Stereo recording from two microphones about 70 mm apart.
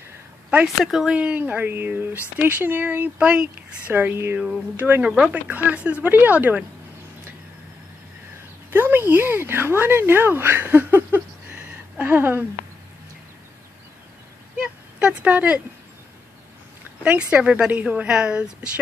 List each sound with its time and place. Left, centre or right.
0.7 s a woman's voice: centre
1.1 s speech: centre
5.0 s a woman's voice: centre
5.3 s speech: right
8.6 s a woman's voice: right
10.7 s a sound: right
12.0 s speech: right
14.6 s a sound: centre
17.0 s a woman's voice: centre